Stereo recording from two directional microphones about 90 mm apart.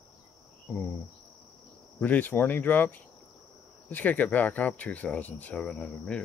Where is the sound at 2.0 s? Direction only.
20° left (ahead or behind).